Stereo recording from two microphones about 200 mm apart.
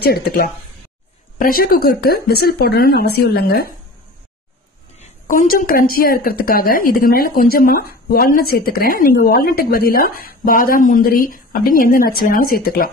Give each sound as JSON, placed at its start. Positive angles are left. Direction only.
{"t": 0.0, "sound": "speech", "side_deg": 50}
{"t": 5.0, "sound": "speech", "side_deg": 40}